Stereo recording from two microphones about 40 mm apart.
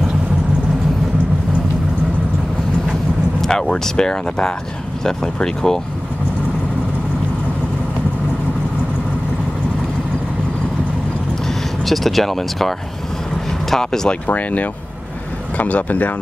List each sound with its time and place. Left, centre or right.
2.9 s speech: centre
11.4 s speech: centre
14.2 s speech: left